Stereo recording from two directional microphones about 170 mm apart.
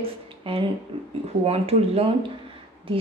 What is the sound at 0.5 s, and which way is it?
A woman's voice, 30° right (ahead or behind).